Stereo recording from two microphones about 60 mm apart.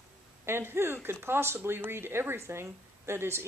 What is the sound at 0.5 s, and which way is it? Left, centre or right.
Speech, right.